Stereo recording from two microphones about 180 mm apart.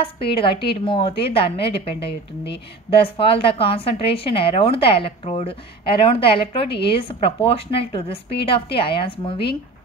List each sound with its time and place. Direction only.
0.0 s a woman's voice: 30° left (ahead or behind)